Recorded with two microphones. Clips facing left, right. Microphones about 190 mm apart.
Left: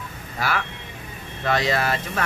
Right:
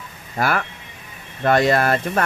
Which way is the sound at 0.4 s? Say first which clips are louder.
Right 5 dB; 55° right (ahead or behind).